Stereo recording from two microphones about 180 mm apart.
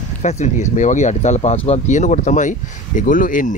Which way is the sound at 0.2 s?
40° left (ahead or behind).